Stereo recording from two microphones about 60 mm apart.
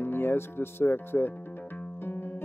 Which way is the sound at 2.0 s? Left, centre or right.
Left.